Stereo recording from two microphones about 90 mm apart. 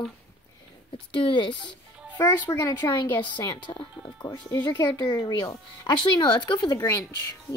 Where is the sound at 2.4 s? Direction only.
45° left (ahead or behind).